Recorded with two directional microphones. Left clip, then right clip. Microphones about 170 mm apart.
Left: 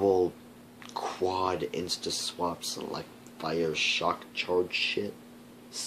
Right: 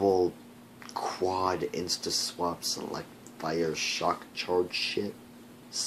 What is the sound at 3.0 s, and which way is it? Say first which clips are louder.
Speech: even; centre (ahead or behind).